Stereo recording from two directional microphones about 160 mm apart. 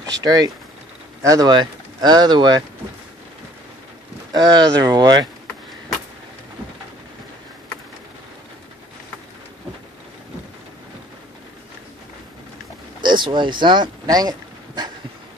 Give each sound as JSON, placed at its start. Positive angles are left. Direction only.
{"t": 0.2, "sound": "speech", "side_deg": -25}
{"t": 4.3, "sound": "speech", "side_deg": -25}
{"t": 13.0, "sound": "speech", "side_deg": -30}